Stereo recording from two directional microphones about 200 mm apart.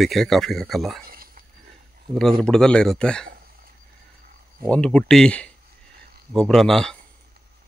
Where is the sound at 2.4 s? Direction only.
5° left (ahead or behind).